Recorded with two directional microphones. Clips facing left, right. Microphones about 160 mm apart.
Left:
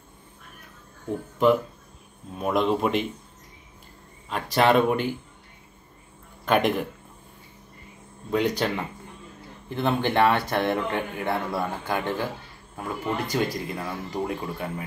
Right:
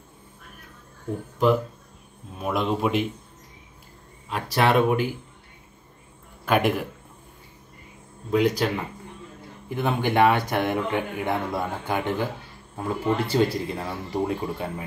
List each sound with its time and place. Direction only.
2.3 s speech: centre (ahead or behind)
4.3 s speech: 5° right (ahead or behind)
6.4 s speech: 5° right (ahead or behind)
8.3 s speech: 5° right (ahead or behind)
9.7 s speech: 10° right (ahead or behind)
12.7 s speech: 30° right (ahead or behind)